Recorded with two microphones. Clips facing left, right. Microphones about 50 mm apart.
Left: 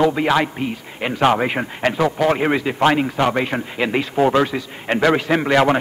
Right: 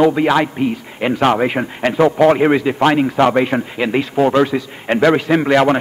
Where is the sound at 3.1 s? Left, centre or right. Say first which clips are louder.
Right 5 dB; right.